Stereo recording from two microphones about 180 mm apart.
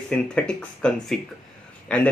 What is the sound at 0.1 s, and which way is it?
Speech, 5° left (ahead or behind).